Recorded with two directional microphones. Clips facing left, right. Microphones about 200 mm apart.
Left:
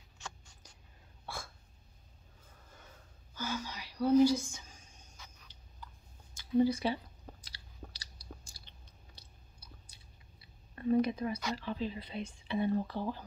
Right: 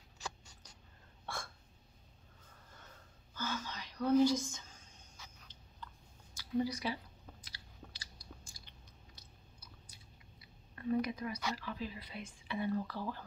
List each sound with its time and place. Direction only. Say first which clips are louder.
1.2 s hiccup: even; 5° left (ahead or behind)
3.3 s whispering: left 2 dB; 10° left (ahead or behind)
6.3 s chewing: left 7 dB; 25° left (ahead or behind)
8.5 s biting: even; 30° left (ahead or behind)
10.4 s a sound: left 5 dB; 30° left (ahead or behind)
11.5 s speech: left 5 dB; 25° left (ahead or behind)